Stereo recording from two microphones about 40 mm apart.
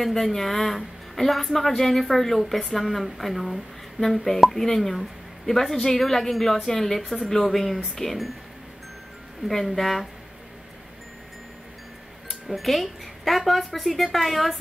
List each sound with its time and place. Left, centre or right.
0.0 s a woman's voice: centre
9.5 s speech: centre
12.3 s speech: centre